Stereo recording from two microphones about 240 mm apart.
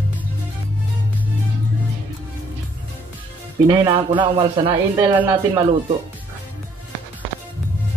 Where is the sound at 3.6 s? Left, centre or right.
Centre.